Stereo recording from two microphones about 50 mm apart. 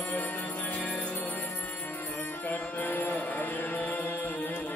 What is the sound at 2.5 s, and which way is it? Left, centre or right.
Music, left.